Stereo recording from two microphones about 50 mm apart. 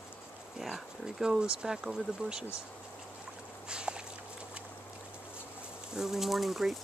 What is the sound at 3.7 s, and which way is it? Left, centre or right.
Walk, centre.